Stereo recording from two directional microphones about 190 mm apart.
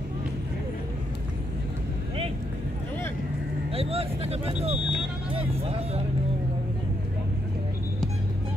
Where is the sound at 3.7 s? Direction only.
30° right (ahead or behind).